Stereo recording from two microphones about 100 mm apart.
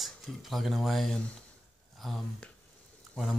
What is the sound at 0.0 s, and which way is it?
Speech, centre (ahead or behind).